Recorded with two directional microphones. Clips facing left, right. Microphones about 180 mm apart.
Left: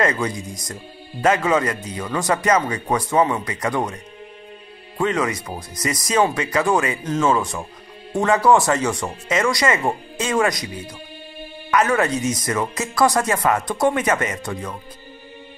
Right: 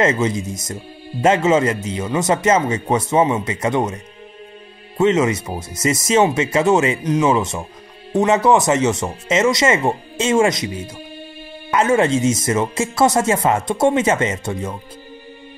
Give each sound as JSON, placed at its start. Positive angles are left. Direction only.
{"t": 0.0, "sound": "speech", "side_deg": -25}
{"t": 4.9, "sound": "speech", "side_deg": -20}
{"t": 11.7, "sound": "speech", "side_deg": -25}